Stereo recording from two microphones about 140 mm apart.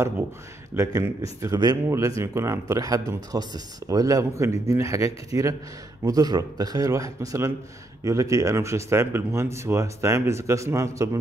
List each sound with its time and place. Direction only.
0.7 s speech: 25° right (ahead or behind)